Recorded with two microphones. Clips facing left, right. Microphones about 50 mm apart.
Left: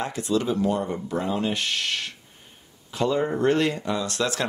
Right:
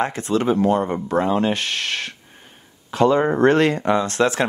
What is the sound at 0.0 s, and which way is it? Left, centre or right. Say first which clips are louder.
Speech: right 5 dB; right.